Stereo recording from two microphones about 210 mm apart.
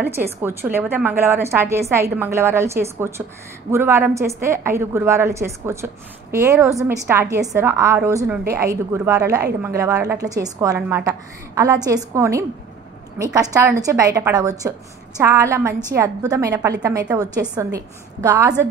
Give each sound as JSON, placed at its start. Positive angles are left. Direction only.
{"t": 0.0, "sound": "a woman's voice", "side_deg": -10}